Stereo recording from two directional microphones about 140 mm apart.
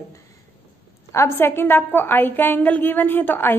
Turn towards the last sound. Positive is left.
turn(degrees=15)  # may be behind; listen again after turning